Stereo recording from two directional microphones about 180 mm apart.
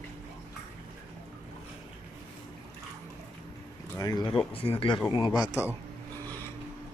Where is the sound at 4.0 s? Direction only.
25° left (ahead or behind).